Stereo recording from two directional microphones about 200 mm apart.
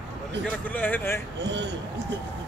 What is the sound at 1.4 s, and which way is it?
Speech, 60° right (ahead or behind).